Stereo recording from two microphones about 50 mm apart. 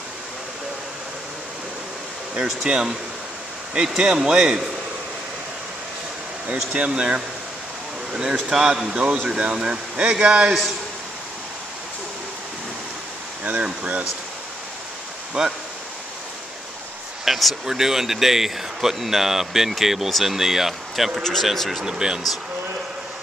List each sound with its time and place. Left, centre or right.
2.4 s speech: centre
6.7 s speech: right
8.5 s speech: centre
13.4 s speech: right
15.4 s speech: centre
17.2 s speech: centre
21.2 s speech: centre
21.8 s speech: centre